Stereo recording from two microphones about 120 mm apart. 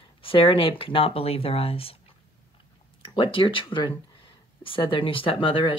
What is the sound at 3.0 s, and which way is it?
Speech, 45° left (ahead or behind).